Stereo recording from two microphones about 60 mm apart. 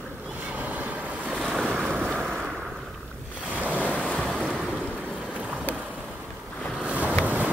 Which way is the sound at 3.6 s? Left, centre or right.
Right.